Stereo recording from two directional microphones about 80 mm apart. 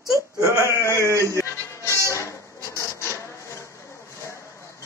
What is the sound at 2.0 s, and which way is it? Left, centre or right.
Music, left.